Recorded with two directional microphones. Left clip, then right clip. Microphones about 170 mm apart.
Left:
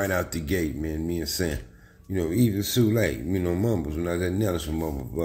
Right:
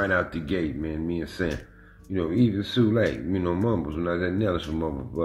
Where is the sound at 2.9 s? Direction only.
Centre (ahead or behind).